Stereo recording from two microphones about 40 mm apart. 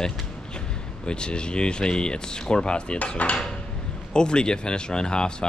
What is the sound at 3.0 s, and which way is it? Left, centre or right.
Cutlery, left.